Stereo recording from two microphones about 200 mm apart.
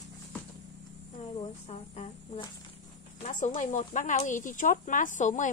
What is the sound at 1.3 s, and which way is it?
Speech, 30° left (ahead or behind).